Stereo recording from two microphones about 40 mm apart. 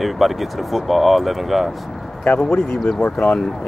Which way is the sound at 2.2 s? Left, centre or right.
Left.